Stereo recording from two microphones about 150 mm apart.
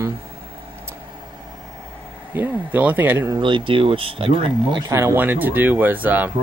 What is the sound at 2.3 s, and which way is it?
Speech, 10° right (ahead or behind).